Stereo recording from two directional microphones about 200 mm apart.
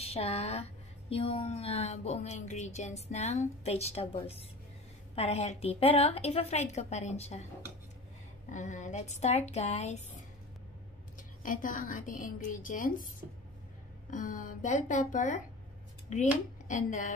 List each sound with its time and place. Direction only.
0.0 s speech: 30° left (ahead or behind)
8.5 s speech: 35° left (ahead or behind)
11.4 s a woman's voice: 40° left (ahead or behind)
14.1 s speech: 40° left (ahead or behind)
16.6 s speech: 40° left (ahead or behind)